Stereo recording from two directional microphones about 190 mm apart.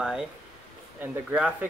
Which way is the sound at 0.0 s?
5° right (ahead or behind).